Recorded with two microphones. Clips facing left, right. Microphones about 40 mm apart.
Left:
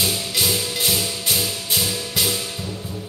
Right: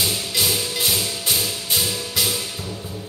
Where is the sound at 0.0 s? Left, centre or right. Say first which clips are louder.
Even; centre.